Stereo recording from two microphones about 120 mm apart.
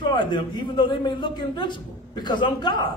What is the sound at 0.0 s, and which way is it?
A man's voice, 40° left (ahead or behind).